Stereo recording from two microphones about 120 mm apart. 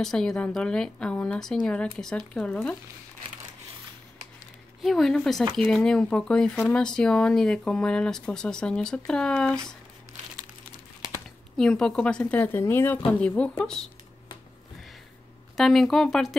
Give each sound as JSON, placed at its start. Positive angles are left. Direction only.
{"t": 0.0, "sound": "speech", "side_deg": 5}
{"t": 4.8, "sound": "speech", "side_deg": 0}
{"t": 11.5, "sound": "speech", "side_deg": 5}
{"t": 15.5, "sound": "speech", "side_deg": 0}